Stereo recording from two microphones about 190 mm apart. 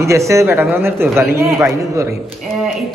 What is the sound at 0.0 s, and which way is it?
A man's voice, 15° right (ahead or behind).